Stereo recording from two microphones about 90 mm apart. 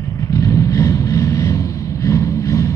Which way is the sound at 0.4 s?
35° left (ahead or behind).